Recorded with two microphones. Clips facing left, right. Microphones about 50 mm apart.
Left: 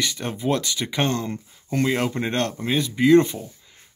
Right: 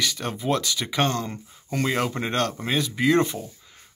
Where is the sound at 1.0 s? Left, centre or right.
Centre.